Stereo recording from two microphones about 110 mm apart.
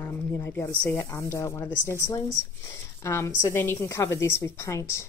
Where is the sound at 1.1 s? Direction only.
25° left (ahead or behind).